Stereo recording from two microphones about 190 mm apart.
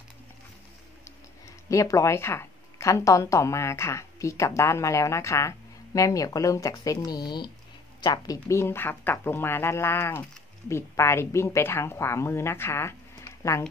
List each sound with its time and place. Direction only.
1.7 s speech: 15° left (ahead or behind)